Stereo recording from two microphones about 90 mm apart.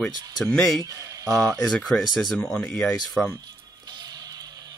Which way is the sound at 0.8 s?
40° right (ahead or behind).